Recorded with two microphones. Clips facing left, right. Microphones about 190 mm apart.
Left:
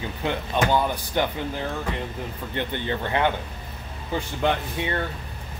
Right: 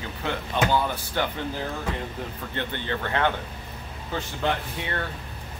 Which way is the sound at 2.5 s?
15° left (ahead or behind).